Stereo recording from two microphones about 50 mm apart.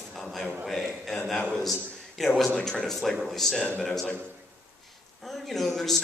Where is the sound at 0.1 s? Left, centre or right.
Centre.